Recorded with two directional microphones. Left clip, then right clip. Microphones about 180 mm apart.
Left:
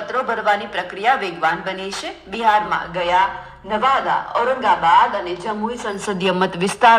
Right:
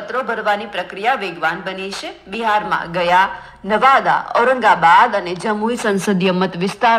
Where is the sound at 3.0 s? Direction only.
45° right (ahead or behind).